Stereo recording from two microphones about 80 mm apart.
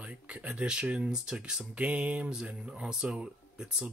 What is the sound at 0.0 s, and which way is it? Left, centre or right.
Speech, centre.